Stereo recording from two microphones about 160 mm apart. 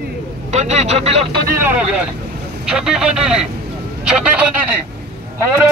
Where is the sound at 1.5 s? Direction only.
10° right (ahead or behind).